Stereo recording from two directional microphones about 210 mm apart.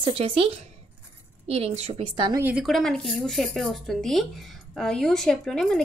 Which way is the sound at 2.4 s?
Centre (ahead or behind).